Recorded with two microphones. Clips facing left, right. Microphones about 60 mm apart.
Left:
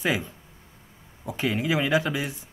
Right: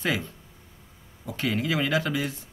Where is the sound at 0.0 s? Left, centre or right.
Centre.